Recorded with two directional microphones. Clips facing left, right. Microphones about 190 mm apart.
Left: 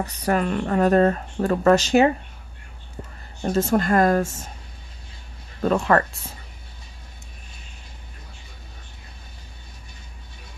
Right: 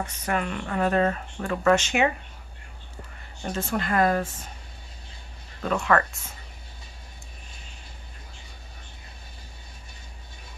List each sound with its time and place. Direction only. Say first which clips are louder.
0.0 s speech: left 5 dB; 35° left (ahead or behind)
3.4 s speech: left 8 dB; 40° left (ahead or behind)
5.6 s speech: left 4 dB; 35° left (ahead or behind)